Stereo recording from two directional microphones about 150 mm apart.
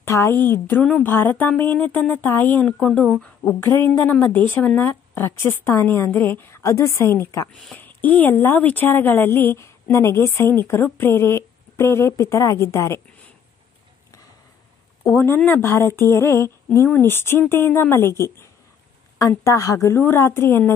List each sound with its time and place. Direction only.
0.0 s a woman's voice: 15° left (ahead or behind)
7.5 s a woman's voice: 10° left (ahead or behind)
15.2 s a woman's voice: 15° left (ahead or behind)